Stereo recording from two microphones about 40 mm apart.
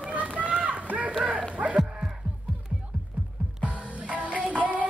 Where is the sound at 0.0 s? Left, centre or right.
Right.